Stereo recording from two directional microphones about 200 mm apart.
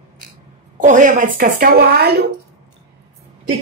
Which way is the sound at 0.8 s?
40° right (ahead or behind).